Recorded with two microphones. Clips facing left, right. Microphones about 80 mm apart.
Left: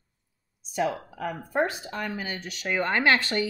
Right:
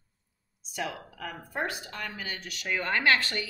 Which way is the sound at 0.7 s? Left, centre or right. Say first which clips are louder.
Left 8 dB; left.